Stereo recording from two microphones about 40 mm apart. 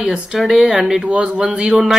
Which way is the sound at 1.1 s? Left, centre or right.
Right.